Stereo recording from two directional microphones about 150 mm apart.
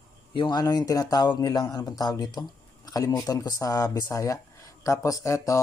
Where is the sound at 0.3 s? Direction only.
30° left (ahead or behind).